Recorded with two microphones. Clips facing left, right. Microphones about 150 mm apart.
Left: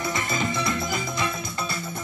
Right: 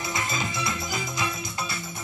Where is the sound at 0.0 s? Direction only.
55° left (ahead or behind).